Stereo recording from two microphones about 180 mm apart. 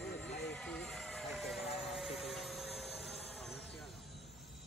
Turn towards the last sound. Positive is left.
turn(degrees=0)  # may be behind; listen again after turning